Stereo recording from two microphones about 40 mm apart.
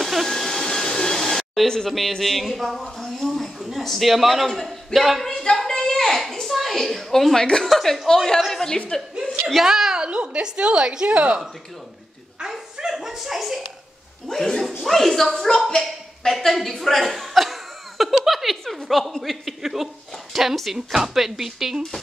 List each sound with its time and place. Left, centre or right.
0.0 s vacuum cleaner: centre
0.3 s vacuum cleaner: centre
1.9 s speech: centre
5.2 s a woman's voice: centre
5.6 s a sound: centre
7.6 s a woman's voice: centre
8.9 s a woman's voice: centre
9.7 s a woman's voice: centre
10.0 s a woman's voice: right
12.9 s a woman's voice: centre
14.2 s a woman's voice: centre
15.7 s chuckle: centre
18.9 s speech: centre